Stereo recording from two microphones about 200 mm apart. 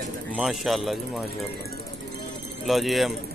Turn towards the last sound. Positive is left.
turn(degrees=0)  # may be behind; listen again after turning